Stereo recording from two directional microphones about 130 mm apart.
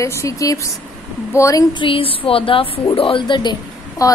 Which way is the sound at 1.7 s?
40° left (ahead or behind).